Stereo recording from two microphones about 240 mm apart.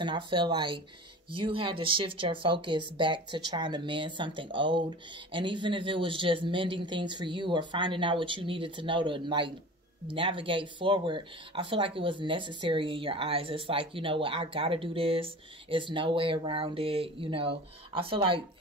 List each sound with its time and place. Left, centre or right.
0.0 s speech: centre